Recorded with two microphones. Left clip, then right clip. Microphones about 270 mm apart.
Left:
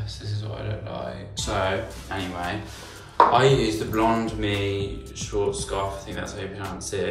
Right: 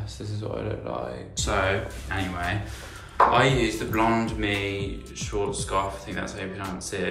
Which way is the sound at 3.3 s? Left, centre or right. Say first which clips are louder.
Left 2 dB; centre.